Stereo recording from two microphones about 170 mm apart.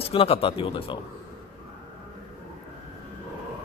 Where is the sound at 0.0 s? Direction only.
35° left (ahead or behind).